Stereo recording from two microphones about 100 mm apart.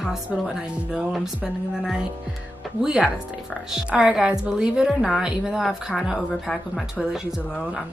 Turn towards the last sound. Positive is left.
turn(degrees=0)  # may be behind; listen again after turning